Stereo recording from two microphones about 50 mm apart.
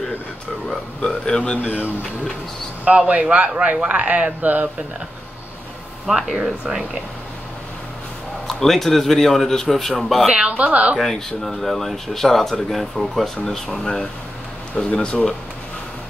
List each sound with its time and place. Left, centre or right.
0.7 s a man's voice: centre
3.1 s speech: right
6.0 s speech: centre
8.5 s a man's voice: centre
10.2 s speech: right
11.0 s speech: centre
14.9 s speech: centre